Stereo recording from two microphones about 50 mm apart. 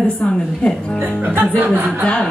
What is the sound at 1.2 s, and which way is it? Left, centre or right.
Speech, right.